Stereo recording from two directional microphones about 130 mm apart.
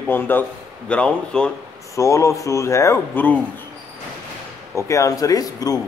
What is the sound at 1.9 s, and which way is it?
Speech, 25° left (ahead or behind).